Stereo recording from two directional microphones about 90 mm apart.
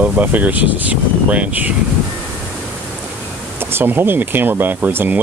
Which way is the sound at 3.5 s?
25° right (ahead or behind).